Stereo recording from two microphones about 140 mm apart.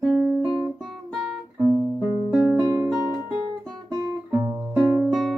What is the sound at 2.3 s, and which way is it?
Music, 5° right (ahead or behind).